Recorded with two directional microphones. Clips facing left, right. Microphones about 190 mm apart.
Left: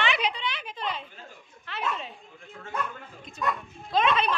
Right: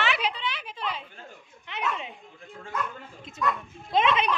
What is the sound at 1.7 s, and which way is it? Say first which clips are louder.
Children playing: even; 20° right (ahead or behind).